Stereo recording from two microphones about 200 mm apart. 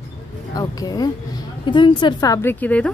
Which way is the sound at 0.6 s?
20° left (ahead or behind).